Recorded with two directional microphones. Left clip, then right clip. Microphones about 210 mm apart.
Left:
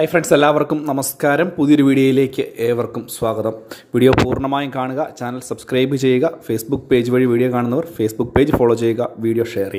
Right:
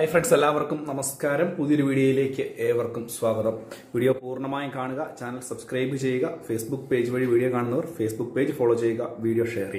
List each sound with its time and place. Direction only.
0.0 s speech: 30° left (ahead or behind); by 9.8 s 45° left (ahead or behind)